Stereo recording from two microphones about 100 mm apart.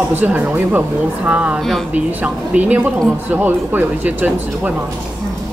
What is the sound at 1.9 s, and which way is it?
Speech, 15° right (ahead or behind).